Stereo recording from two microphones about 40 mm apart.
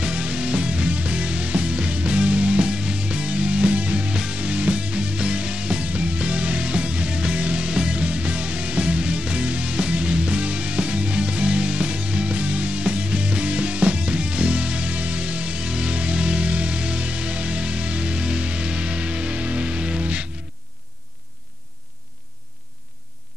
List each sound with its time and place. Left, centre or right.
0.0 s music: right